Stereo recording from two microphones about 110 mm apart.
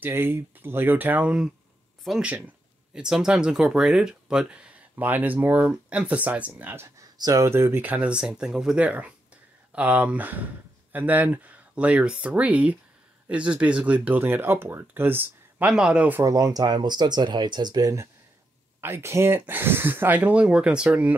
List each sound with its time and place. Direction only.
0.0 s speech: 20° right (ahead or behind)
7.2 s speech: 35° right (ahead or behind); by 16.2 s 10° right (ahead or behind)
16.2 s speech: 30° right (ahead or behind)
18.8 s speech: 20° right (ahead or behind)